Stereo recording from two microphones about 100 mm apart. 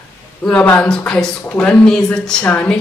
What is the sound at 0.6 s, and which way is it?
A woman's voice, 15° left (ahead or behind).